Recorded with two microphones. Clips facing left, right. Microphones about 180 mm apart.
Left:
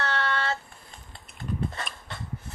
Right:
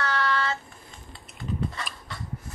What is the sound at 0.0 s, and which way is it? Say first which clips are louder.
Child singing: right 2 dB; 25° left (ahead or behind).